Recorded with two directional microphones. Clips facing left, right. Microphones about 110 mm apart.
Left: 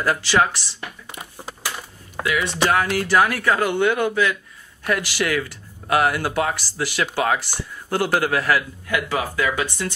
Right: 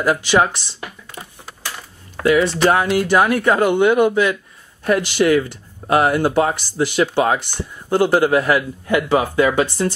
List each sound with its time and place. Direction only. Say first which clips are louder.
0.0 s speech: right 3 dB; 15° right (ahead or behind)
2.3 s speech: right 4 dB; 25° right (ahead or behind)